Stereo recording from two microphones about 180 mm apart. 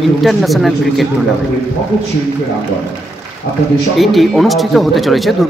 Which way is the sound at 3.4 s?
60° left (ahead or behind).